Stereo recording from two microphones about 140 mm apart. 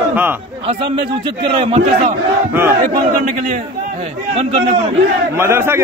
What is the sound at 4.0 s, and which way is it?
Speech, 50° right (ahead or behind).